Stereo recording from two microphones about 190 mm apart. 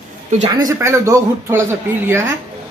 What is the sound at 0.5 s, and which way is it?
Speech, 15° right (ahead or behind).